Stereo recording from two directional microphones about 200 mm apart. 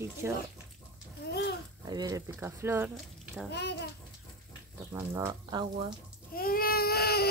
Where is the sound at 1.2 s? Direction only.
55° left (ahead or behind).